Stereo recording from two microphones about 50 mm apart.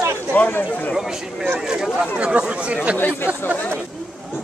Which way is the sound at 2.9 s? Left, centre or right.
Left.